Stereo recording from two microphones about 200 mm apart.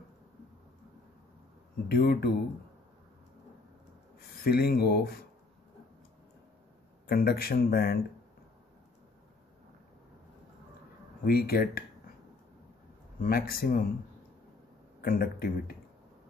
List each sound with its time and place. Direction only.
1.9 s speech: 50° left (ahead or behind)
4.4 s speech: 50° left (ahead or behind)
7.1 s speech: 50° left (ahead or behind)
11.2 s speech: 50° left (ahead or behind)
13.2 s speech: 50° left (ahead or behind)
15.0 s speech: 50° left (ahead or behind)